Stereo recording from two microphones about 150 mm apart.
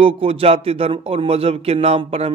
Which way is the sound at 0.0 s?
40° right (ahead or behind).